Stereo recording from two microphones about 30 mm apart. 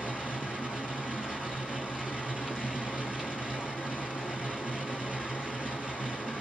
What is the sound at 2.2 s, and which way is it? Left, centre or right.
Vehicle, right.